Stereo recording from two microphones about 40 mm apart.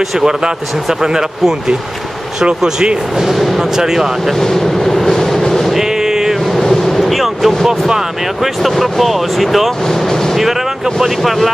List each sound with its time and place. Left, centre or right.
2.4 s speech: right
3.3 s speech: centre
4.4 s vehicle: centre
5.4 s music: centre
5.7 s a sound: centre
6.6 s a sound: centre
7.0 s a sound: centre
8.6 s speech: centre
11.0 s speech: centre